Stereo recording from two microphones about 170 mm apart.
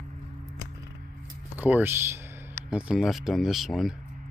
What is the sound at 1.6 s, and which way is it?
Speech, 10° right (ahead or behind).